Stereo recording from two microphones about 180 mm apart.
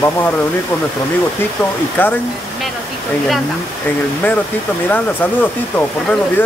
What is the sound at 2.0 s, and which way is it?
Speech, 10° left (ahead or behind).